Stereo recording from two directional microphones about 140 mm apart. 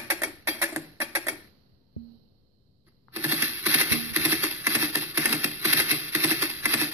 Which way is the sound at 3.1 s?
15° right (ahead or behind).